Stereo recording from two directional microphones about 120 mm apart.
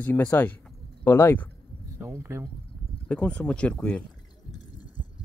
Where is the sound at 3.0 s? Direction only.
10° left (ahead or behind).